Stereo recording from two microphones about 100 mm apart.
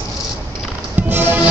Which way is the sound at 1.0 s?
20° right (ahead or behind).